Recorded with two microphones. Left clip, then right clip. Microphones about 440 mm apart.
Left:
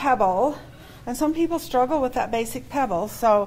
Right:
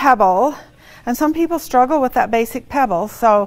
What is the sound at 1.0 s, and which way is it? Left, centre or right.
A woman's voice, right.